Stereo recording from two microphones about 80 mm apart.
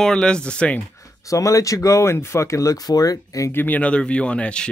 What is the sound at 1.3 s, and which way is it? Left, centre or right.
Speech, left.